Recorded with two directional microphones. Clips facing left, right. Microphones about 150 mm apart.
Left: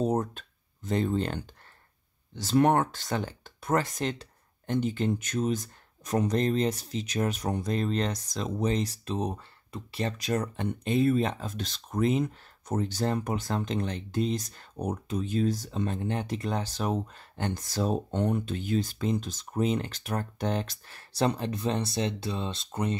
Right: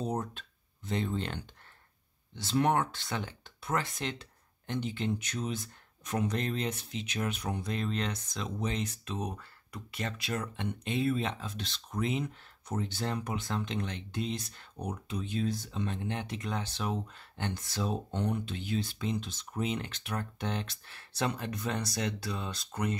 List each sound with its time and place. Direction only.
0.0 s speech: 45° left (ahead or behind); by 22.9 s 25° left (ahead or behind)